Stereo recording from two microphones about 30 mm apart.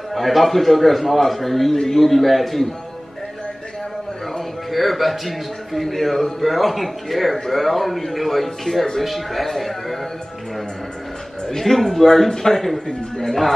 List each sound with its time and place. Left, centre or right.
0.1 s a man's voice: centre
4.6 s a man's voice: centre
11.4 s a man's voice: centre